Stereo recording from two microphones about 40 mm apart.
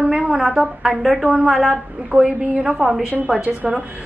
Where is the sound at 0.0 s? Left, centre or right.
Right.